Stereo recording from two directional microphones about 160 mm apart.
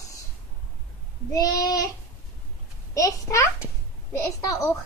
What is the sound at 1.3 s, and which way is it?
Speech, 20° left (ahead or behind).